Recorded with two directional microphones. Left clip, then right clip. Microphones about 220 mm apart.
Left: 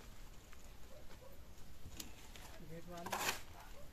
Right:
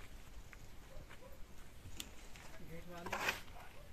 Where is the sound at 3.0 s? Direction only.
60° left (ahead or behind).